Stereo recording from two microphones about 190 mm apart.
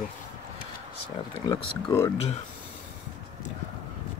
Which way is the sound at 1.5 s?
15° left (ahead or behind).